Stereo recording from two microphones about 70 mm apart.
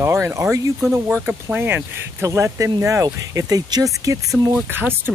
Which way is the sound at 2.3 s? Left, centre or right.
Right.